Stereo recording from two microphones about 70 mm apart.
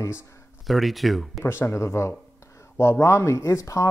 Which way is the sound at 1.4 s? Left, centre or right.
Left.